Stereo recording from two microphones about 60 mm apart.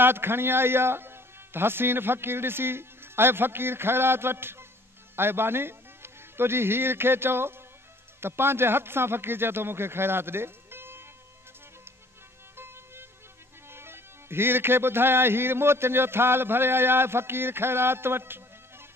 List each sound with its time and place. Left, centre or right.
0.0 s a man's voice: right
12.5 s music: right